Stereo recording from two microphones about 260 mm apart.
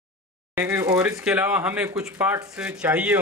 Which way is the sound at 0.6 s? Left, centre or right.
Centre.